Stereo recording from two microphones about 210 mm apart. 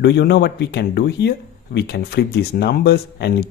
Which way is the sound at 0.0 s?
50° left (ahead or behind).